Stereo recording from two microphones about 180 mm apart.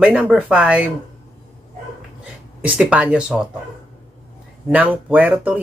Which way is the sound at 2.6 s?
5° right (ahead or behind).